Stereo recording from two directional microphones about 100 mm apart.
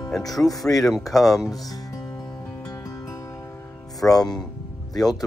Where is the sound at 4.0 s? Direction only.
5° left (ahead or behind).